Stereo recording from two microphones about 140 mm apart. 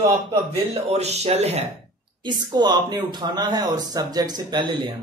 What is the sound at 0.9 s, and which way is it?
Speech, 50° right (ahead or behind).